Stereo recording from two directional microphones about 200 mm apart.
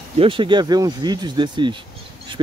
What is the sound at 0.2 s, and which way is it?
Speech, 25° right (ahead or behind).